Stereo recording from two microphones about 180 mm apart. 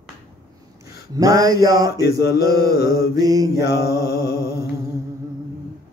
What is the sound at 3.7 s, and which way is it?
Mantra, 60° left (ahead or behind).